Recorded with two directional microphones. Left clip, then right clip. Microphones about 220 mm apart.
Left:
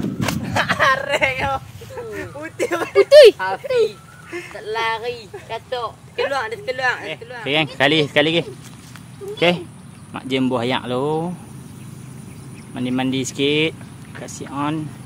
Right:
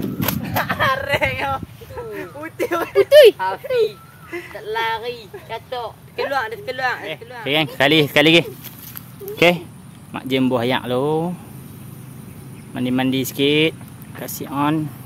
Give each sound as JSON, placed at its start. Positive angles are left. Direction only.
{"t": 0.4, "sound": "speech", "side_deg": 0}
{"t": 3.0, "sound": "speech", "side_deg": 20}
{"t": 3.3, "sound": "speech", "side_deg": -10}
{"t": 9.4, "sound": "speech", "side_deg": -35}
{"t": 10.1, "sound": "speech", "side_deg": -10}
{"t": 12.7, "sound": "speech", "side_deg": -15}